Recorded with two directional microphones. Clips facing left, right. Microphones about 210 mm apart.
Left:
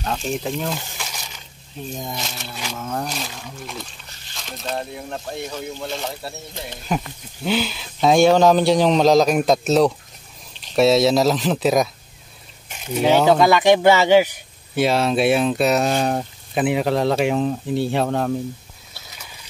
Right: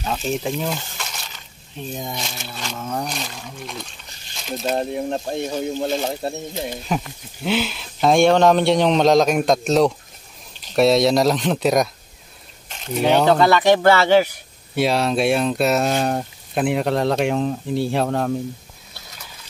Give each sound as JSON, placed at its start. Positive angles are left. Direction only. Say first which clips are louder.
{"t": 0.0, "sound": "speech", "louder": "right 1 dB", "side_deg": -5}
{"t": 1.0, "sound": "crushing", "louder": "even", "side_deg": 10}
{"t": 2.0, "sound": "speech", "louder": "even", "side_deg": 0}
{"t": 4.7, "sound": "speech", "louder": "right 6 dB", "side_deg": -25}
{"t": 6.9, "sound": "speech", "louder": "left 5 dB", "side_deg": 0}
{"t": 14.8, "sound": "speech", "louder": "left 1 dB", "side_deg": 0}